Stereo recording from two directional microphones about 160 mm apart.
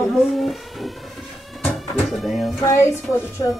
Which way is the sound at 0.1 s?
Centre (ahead or behind).